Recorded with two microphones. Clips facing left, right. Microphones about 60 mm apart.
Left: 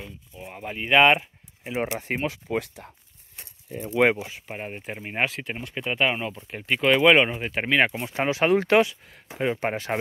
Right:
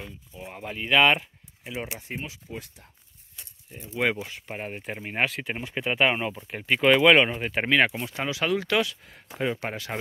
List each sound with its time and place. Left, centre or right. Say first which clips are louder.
0.4 s speech: left 1 dB; centre; by 1.8 s left
2.0 s speech: left 8 dB; left
3.8 s speech: left 6 dB; left
4.2 s speech: even; centre
7.8 s speech: left 2 dB; left